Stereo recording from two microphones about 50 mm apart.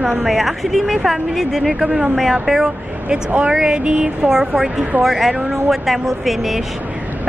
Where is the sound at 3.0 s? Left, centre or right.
Right.